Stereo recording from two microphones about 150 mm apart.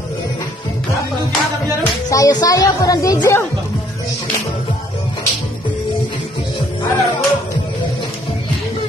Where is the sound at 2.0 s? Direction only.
25° left (ahead or behind).